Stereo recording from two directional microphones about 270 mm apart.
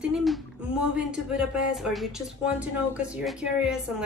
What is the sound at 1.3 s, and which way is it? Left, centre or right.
Speech, centre.